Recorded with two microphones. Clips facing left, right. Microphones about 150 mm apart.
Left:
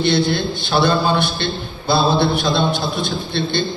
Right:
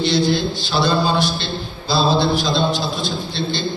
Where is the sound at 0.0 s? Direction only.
55° left (ahead or behind).